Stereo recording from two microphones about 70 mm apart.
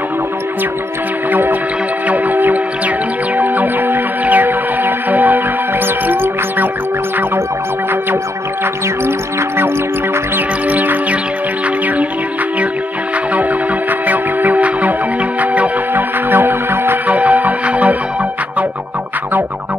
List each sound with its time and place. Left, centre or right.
1.3 s music: right
10.3 s music: right
14.0 s music: right